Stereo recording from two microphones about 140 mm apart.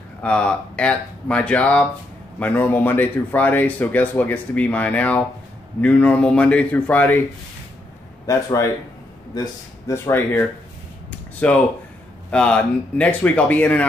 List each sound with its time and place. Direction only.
0.2 s speech: 10° left (ahead or behind)
8.3 s speech: 20° left (ahead or behind)
11.1 s a sound: 10° left (ahead or behind)
12.3 s speech: 5° left (ahead or behind)